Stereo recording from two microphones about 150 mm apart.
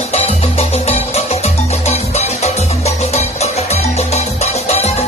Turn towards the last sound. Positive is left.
turn(degrees=45)  # may be behind; listen again after turning